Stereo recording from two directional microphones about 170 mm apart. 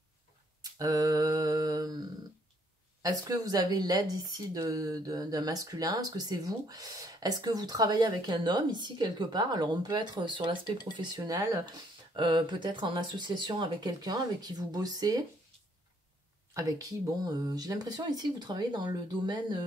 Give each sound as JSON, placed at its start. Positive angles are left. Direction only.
{"t": 0.7, "sound": "a sound", "side_deg": -20}
{"t": 3.0, "sound": "speech", "side_deg": -20}
{"t": 16.5, "sound": "speech", "side_deg": -20}